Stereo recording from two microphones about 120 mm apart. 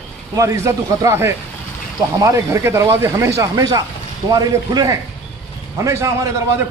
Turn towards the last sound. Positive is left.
turn(degrees=-25)  # may be behind; listen again after turning